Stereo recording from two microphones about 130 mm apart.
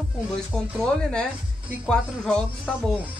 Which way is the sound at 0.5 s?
5° left (ahead or behind).